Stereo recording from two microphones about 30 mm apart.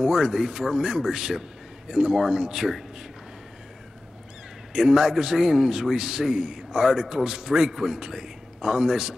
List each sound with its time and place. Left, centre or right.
0.0 s a man's voice: centre
4.7 s a man's voice: centre